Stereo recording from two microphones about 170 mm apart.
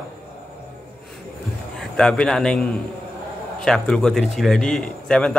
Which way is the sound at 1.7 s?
5° left (ahead or behind).